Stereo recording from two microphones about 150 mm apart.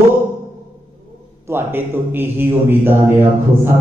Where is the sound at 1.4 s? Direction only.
15° right (ahead or behind).